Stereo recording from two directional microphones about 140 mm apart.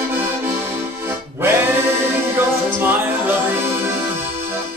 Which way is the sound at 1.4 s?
15° right (ahead or behind).